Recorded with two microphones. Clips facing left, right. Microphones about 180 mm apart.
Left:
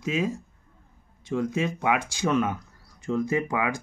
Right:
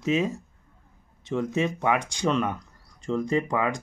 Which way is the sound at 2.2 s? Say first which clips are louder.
Left 1 dB; 5° left (ahead or behind).